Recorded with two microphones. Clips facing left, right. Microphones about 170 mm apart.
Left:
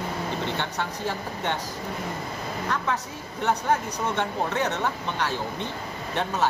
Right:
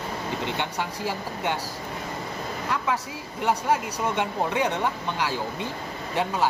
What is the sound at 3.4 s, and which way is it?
Speech, 10° right (ahead or behind).